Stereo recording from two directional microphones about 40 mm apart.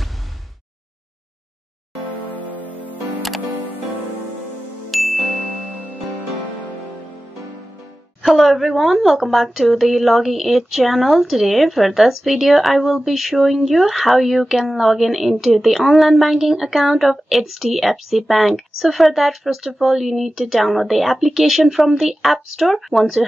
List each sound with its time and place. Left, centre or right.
2.8 s music: right
3.2 s music: centre
4.9 s ding: centre
8.2 s speech: centre